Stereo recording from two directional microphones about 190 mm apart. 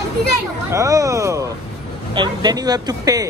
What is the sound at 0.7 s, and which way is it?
Speech, 15° right (ahead or behind).